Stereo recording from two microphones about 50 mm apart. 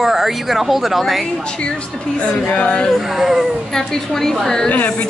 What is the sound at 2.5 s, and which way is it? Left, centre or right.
Speech, left.